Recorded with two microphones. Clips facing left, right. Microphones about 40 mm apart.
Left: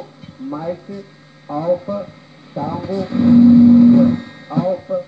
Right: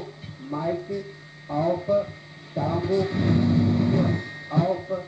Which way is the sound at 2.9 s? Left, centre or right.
Right.